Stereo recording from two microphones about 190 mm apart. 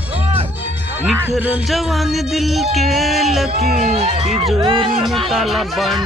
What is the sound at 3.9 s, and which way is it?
Speech, 35° right (ahead or behind).